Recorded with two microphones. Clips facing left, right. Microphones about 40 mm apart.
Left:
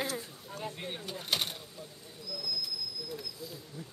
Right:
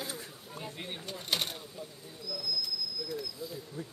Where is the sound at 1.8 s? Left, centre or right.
Centre.